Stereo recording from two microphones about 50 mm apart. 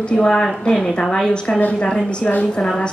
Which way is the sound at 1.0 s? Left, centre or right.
Centre.